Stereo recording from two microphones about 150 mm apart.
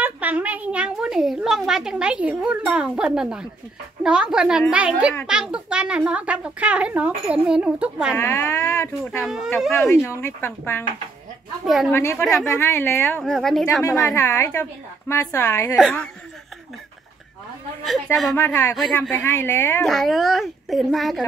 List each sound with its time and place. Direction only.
0.0 s a woman's voice: 10° right (ahead or behind)
8.2 s a woman's voice: 20° left (ahead or behind)
11.6 s a woman's voice: centre (ahead or behind)
11.9 s a woman's voice: 15° left (ahead or behind)
13.2 s a woman's voice: centre (ahead or behind)
14.0 s a woman's voice: 20° left (ahead or behind)
17.8 s a woman's voice: centre (ahead or behind)
18.4 s a woman's voice: 20° left (ahead or behind)
19.9 s a woman's voice: centre (ahead or behind)